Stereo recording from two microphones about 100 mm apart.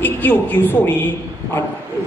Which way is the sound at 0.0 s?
20° left (ahead or behind).